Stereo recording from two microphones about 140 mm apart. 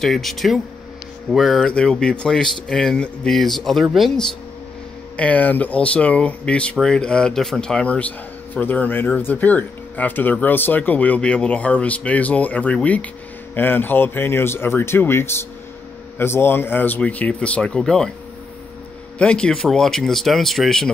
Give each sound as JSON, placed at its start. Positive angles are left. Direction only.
{"t": 0.0, "sound": "speech", "side_deg": 0}
{"t": 5.1, "sound": "speech", "side_deg": 10}
{"t": 19.1, "sound": "speech", "side_deg": 5}